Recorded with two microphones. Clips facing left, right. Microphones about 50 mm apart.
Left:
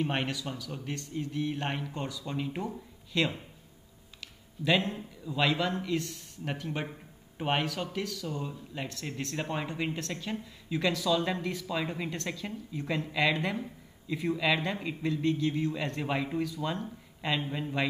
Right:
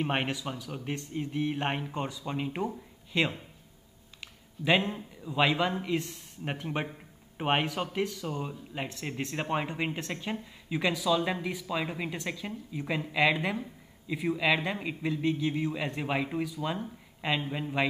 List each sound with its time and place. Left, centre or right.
0.0 s a man's voice: centre